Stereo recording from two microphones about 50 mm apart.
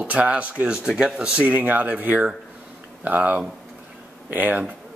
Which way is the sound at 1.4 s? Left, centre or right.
Right.